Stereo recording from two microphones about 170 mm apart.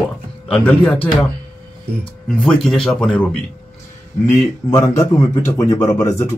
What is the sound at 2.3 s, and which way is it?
Speech, 5° left (ahead or behind).